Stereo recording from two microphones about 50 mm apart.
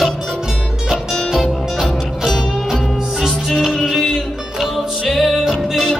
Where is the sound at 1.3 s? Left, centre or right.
Centre.